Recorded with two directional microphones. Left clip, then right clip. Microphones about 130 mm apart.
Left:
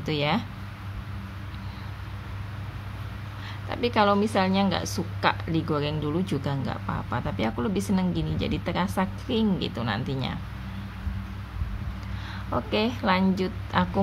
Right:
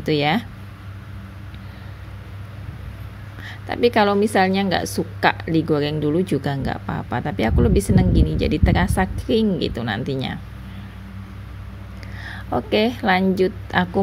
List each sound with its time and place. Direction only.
0.0 s a woman's voice: 35° right (ahead or behind)
3.4 s a woman's voice: 35° right (ahead or behind)
12.3 s a woman's voice: 35° right (ahead or behind)